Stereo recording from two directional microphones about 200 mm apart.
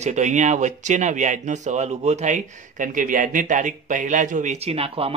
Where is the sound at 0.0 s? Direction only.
35° right (ahead or behind).